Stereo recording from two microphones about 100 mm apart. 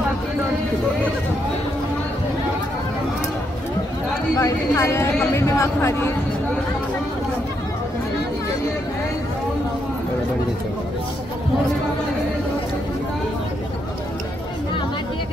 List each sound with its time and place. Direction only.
4.4 s speech: 30° left (ahead or behind)